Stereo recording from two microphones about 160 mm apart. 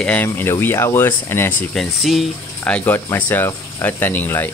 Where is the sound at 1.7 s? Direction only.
Centre (ahead or behind).